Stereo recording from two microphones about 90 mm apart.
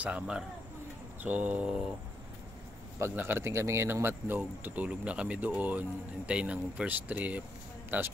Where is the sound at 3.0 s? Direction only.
25° right (ahead or behind).